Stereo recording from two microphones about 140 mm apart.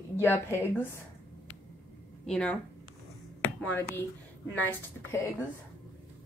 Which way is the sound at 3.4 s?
10° left (ahead or behind).